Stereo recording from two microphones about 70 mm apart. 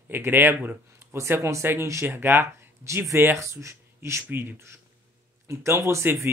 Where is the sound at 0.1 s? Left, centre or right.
Right.